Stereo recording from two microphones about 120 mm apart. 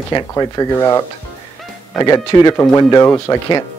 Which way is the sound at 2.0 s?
35° left (ahead or behind).